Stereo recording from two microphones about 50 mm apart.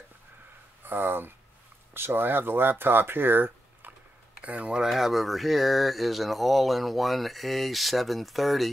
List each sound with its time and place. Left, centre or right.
0.8 s speech: right
4.4 s speech: right
4.8 s speech: centre